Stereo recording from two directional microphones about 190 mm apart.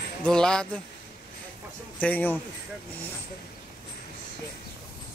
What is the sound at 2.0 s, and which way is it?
Speech, 10° left (ahead or behind).